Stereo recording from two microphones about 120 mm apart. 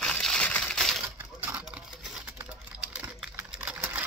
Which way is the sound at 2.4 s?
10° right (ahead or behind).